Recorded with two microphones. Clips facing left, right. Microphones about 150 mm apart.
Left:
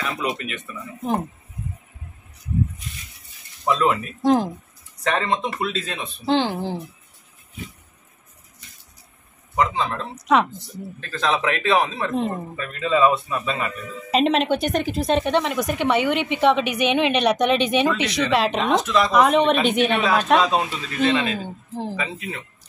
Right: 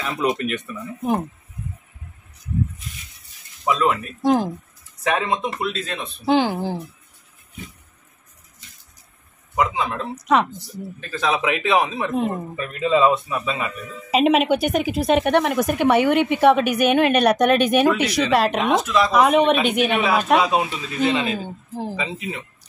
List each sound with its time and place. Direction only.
0.2 s speech: 45° right (ahead or behind)
0.6 s speech: 10° right (ahead or behind)
3.6 s speech: centre (ahead or behind)
9.6 s speech: 5° right (ahead or behind)
21.9 s speech: 20° right (ahead or behind)